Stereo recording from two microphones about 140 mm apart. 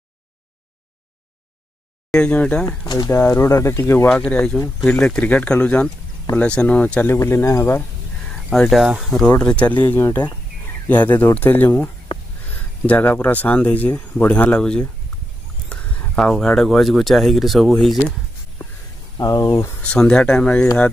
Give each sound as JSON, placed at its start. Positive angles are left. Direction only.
{"t": 2.0, "sound": "speech", "side_deg": 5}
{"t": 2.6, "sound": "speech", "side_deg": 25}
{"t": 4.3, "sound": "speech", "side_deg": 5}
{"t": 8.5, "sound": "speech", "side_deg": 0}
{"t": 19.1, "sound": "speech", "side_deg": 25}
{"t": 19.8, "sound": "speech", "side_deg": 10}